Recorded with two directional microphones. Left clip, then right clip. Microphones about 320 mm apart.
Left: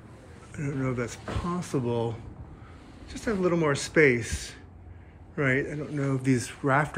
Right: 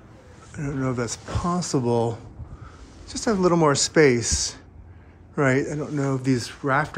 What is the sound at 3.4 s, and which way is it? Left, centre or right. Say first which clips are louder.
Speech: right 7 dB; centre.